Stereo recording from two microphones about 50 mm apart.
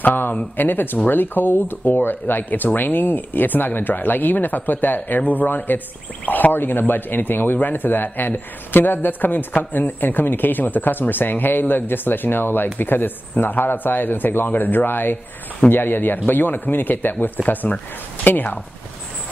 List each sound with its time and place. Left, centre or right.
0.0 s speech: left